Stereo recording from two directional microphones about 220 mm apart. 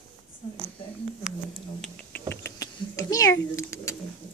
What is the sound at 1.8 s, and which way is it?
Typing, 10° left (ahead or behind).